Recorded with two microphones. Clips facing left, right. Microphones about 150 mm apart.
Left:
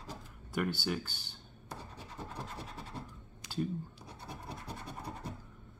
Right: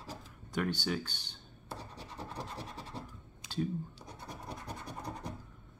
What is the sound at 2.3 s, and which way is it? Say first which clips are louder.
Scratch: right 3 dB; 10° right (ahead or behind).